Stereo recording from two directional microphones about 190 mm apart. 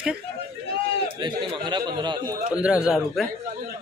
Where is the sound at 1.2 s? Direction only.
25° right (ahead or behind).